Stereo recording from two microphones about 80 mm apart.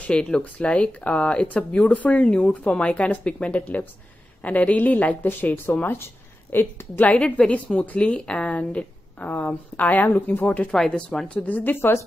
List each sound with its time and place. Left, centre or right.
0.1 s a woman's voice: centre
10.7 s speech: centre
11.3 s a woman's voice: left